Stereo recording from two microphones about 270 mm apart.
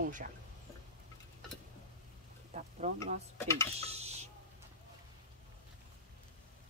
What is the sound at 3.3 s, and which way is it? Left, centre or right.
Speech, centre.